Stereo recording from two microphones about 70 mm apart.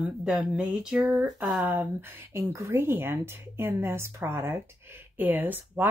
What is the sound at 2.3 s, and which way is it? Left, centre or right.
Speech, right.